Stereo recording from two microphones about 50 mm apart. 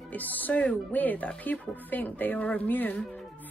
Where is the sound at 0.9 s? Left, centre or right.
Left.